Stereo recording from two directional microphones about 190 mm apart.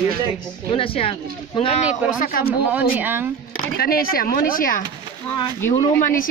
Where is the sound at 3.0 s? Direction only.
10° right (ahead or behind).